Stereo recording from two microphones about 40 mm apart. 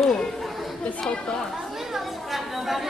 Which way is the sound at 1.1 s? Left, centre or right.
Centre.